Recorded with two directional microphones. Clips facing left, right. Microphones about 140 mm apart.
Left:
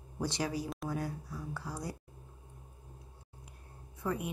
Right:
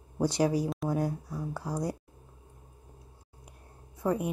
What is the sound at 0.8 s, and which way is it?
Speech, 15° right (ahead or behind).